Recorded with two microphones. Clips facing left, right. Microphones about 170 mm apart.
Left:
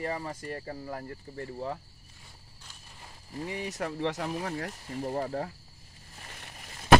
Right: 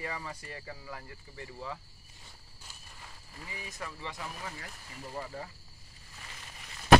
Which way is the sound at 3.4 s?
70° left (ahead or behind).